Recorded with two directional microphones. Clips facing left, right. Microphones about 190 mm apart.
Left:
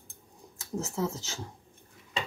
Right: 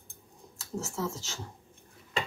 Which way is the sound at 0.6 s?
20° left (ahead or behind).